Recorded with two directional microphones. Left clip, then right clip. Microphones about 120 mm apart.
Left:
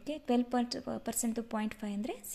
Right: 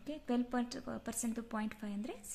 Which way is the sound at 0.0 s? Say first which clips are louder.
Left 6 dB; 35° left (ahead or behind).